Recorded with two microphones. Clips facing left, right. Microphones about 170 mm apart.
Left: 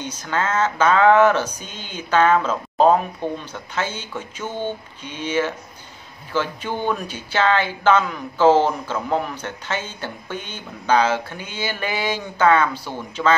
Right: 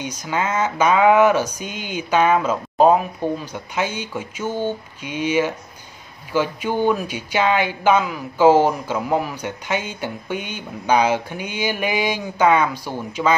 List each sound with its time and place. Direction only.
0.0 s speech: 10° right (ahead or behind)